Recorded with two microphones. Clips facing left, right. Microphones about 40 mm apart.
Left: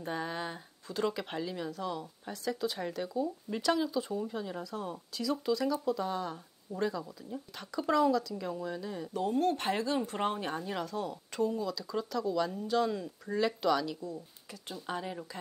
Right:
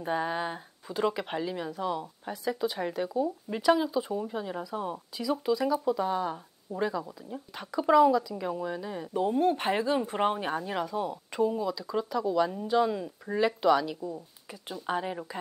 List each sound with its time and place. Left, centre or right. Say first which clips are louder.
0.0 s speech: right 6 dB; centre